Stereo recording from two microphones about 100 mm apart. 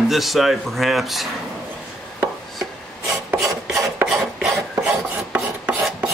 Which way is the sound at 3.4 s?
30° right (ahead or behind).